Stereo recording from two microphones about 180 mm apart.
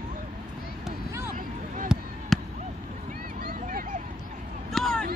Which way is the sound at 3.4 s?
55° right (ahead or behind).